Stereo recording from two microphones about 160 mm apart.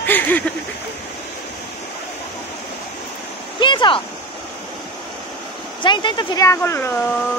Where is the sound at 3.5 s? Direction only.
30° left (ahead or behind).